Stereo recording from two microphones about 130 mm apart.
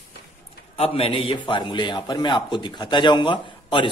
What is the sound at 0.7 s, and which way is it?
A man's voice, 50° left (ahead or behind).